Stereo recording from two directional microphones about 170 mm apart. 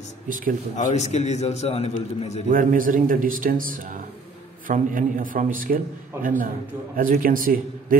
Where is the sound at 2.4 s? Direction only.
55° right (ahead or behind).